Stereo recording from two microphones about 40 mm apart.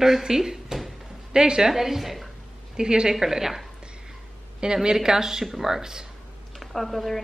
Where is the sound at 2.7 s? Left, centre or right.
Centre.